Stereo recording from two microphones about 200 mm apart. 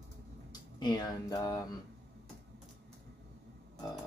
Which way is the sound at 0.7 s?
20° left (ahead or behind).